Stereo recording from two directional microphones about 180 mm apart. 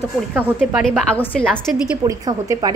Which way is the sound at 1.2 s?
10° left (ahead or behind).